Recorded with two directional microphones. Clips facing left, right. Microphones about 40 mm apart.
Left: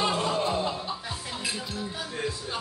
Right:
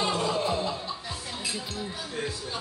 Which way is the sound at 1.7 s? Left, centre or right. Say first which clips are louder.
Left 1 dB; centre.